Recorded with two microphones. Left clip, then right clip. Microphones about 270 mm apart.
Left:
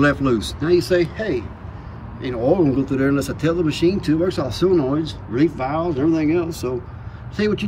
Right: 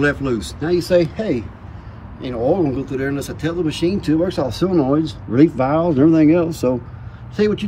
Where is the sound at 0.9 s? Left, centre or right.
Centre.